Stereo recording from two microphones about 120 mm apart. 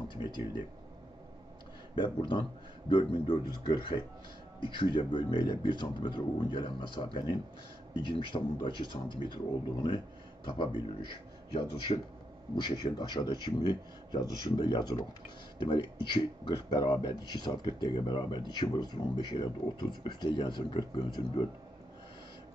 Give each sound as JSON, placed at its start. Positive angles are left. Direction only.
{"t": 0.1, "sound": "speech", "side_deg": 40}
{"t": 2.0, "sound": "speech", "side_deg": 40}
{"t": 12.5, "sound": "speech", "side_deg": 40}